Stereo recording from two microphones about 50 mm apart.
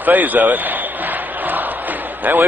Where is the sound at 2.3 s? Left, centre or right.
Right.